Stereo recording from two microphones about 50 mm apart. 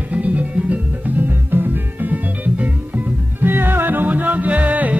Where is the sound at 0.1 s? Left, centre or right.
Right.